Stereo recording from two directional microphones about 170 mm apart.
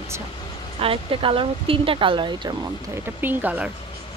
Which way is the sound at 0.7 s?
30° right (ahead or behind).